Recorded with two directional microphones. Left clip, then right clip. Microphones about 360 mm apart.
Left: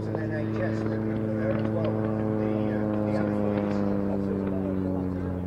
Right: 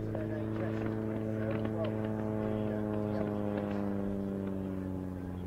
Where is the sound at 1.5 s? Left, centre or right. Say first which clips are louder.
Left 7 dB; centre.